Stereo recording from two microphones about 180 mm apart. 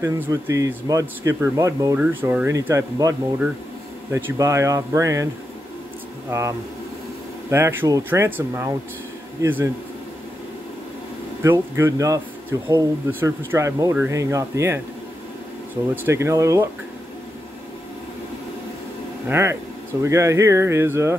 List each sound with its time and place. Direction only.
0.0 s speech: 15° right (ahead or behind)
6.3 s speech: 15° right (ahead or behind)
11.4 s speech: 15° right (ahead or behind)
15.9 s speech: 15° right (ahead or behind)
19.2 s speech: 15° right (ahead or behind)